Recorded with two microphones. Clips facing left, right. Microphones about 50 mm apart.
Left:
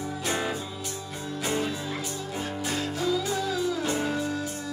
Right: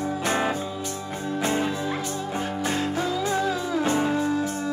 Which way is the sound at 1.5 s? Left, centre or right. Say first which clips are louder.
Right 2 dB; right.